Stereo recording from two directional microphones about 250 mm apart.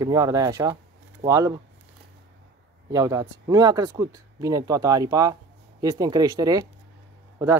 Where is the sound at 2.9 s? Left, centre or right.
Centre.